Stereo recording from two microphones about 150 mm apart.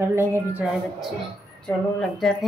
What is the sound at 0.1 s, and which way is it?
Speech, 15° right (ahead or behind).